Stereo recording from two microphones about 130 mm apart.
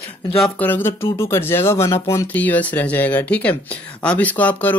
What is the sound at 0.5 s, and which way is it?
Speech, 15° left (ahead or behind).